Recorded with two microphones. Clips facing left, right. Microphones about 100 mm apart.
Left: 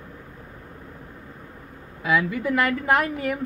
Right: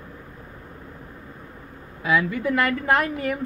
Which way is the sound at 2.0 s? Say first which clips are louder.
Right 1 dB; 5° left (ahead or behind).